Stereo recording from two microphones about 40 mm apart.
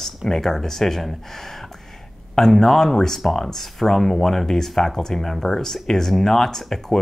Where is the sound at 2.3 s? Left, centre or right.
Centre.